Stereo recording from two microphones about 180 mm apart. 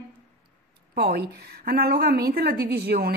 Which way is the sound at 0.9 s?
60° right (ahead or behind).